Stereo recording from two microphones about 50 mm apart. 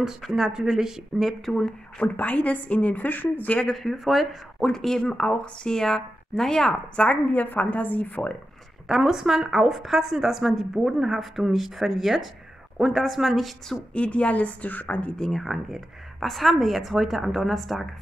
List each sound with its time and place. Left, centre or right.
0.2 s a woman's voice: centre
1.6 s a woman's voice: left
3.6 s a woman's voice: centre
5.1 s speech: left
7.1 s a woman's voice: left
8.8 s a woman's voice: centre
13.9 s a woman's voice: left
15.1 s speech: centre
15.4 s a woman's voice: centre